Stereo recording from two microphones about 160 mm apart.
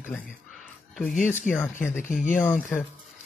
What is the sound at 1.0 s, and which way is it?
Speech, 55° left (ahead or behind).